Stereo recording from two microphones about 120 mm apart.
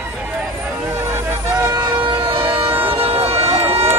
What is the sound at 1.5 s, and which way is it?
Vehicle, 30° right (ahead or behind).